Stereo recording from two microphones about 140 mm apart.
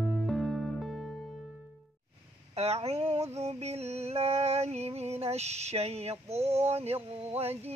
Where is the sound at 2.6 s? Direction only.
50° right (ahead or behind).